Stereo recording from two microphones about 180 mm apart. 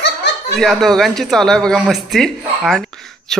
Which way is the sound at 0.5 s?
Centre (ahead or behind).